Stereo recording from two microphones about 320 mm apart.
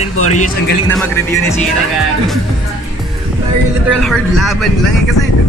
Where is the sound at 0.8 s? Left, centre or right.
Centre.